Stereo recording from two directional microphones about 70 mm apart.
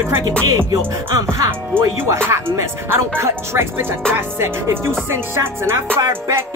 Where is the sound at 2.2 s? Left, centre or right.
Right.